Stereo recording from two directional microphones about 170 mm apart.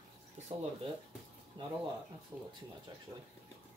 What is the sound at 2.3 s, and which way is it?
Speech, 15° right (ahead or behind).